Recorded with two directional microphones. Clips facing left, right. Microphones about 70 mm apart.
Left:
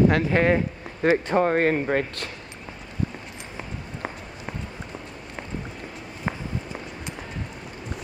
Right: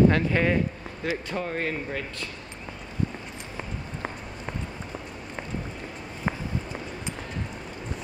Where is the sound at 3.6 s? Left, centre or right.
Centre.